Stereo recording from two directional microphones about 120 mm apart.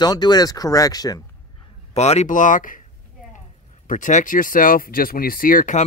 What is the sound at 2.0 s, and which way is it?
Speech, 65° left (ahead or behind).